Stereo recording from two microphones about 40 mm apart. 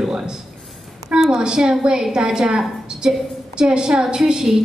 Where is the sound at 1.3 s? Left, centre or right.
Centre.